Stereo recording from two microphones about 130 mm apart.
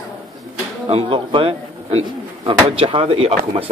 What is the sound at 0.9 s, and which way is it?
A man's voice, 45° right (ahead or behind).